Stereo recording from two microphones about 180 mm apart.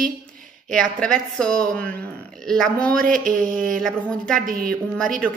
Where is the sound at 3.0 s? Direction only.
50° right (ahead or behind).